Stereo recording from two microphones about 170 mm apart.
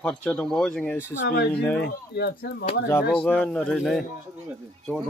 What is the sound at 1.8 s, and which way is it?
Speech, 70° left (ahead or behind).